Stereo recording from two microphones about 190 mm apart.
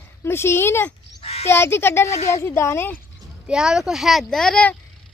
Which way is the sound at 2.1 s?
35° left (ahead or behind).